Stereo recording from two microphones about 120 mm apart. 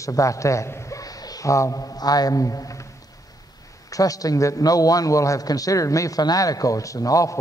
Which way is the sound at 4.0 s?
30° left (ahead or behind).